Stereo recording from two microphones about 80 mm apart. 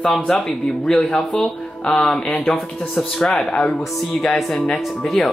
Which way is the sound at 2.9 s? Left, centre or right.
Centre.